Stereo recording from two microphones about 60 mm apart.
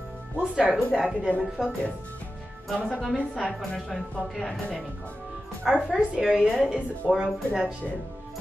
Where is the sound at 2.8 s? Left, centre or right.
Centre.